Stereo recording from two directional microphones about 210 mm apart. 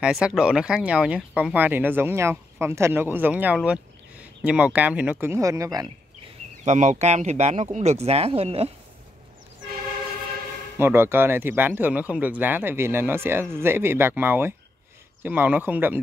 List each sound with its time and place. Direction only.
0.0 s speech: 5° right (ahead or behind)
6.6 s speech: 35° right (ahead or behind)
10.8 s speech: 10° right (ahead or behind)